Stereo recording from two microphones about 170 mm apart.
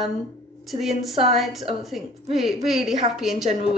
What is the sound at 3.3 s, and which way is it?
Speech, 40° right (ahead or behind).